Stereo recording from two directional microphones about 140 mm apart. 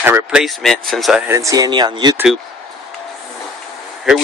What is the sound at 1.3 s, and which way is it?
Speech, 25° right (ahead or behind).